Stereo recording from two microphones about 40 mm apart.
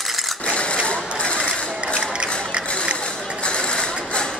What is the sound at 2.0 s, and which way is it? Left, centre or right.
Music, right.